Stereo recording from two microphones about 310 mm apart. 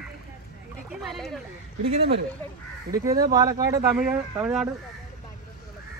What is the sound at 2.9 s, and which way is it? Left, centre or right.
Speech, centre.